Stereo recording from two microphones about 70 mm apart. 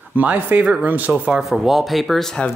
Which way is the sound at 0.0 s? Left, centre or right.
Right.